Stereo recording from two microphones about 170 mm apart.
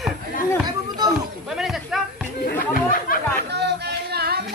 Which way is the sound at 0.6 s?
25° right (ahead or behind).